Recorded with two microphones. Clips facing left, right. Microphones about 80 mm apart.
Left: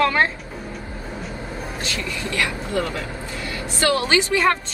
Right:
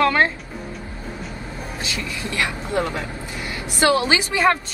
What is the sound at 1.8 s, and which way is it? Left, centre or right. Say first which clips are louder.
A woman's voice: even; centre.